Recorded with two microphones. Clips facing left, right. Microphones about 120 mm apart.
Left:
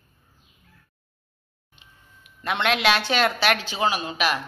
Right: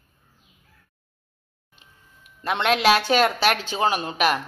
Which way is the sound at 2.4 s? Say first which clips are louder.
Right 3 dB; 35° right (ahead or behind).